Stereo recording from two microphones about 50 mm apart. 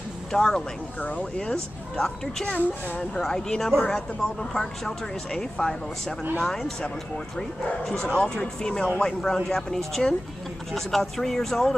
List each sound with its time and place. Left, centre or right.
0.3 s speech: centre
1.0 s speech: left
2.4 s speech: left
3.3 s speech: centre
7.3 s speech: centre